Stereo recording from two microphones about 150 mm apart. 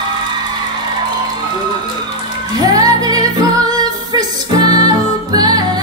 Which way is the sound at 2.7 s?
25° right (ahead or behind).